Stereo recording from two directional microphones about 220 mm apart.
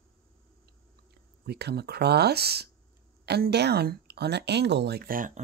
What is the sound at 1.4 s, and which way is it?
Speech, 45° right (ahead or behind).